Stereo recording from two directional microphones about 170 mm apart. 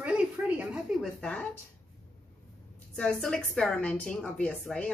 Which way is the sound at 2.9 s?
5° left (ahead or behind).